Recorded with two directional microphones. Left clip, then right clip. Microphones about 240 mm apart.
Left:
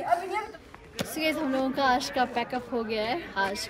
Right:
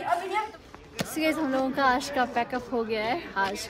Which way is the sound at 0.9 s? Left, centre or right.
Centre.